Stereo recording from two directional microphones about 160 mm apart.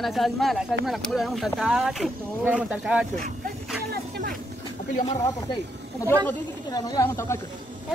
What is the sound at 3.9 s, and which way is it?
Vehicle, 85° right.